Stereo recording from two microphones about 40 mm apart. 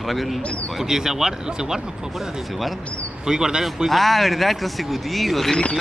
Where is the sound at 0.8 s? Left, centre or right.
Centre.